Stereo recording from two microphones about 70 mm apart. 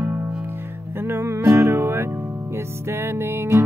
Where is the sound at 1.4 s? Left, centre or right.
Right.